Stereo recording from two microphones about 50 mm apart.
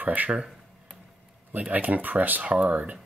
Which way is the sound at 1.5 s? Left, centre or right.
Right.